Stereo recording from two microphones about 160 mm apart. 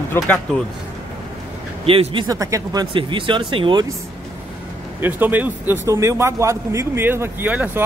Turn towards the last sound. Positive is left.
turn(degrees=-10)  # may be behind; listen again after turning